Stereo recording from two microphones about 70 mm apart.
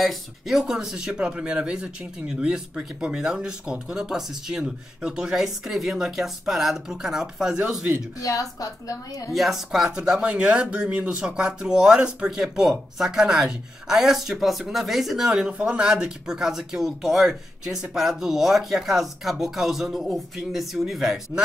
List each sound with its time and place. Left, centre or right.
0.0 s speech: centre
8.2 s a woman's voice: left
9.3 s speech: centre